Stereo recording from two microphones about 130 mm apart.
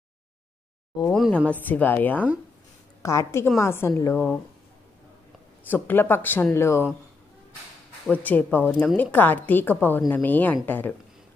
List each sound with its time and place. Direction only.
1.1 s speech: centre (ahead or behind)
1.5 s a woman's voice: 15° left (ahead or behind)
5.7 s a woman's voice: 15° left (ahead or behind)
8.1 s a woman's voice: 10° left (ahead or behind)